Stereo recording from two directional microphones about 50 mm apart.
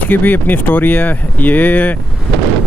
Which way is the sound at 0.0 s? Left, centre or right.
Left.